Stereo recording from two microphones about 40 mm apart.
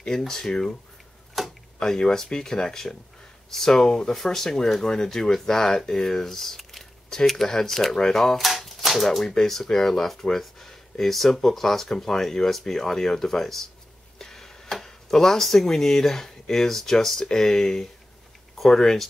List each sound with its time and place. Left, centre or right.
0.3 s speech: centre
1.4 s tick-tock: centre
1.8 s speech: centre